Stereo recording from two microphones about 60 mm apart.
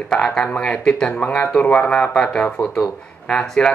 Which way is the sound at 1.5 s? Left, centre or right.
Centre.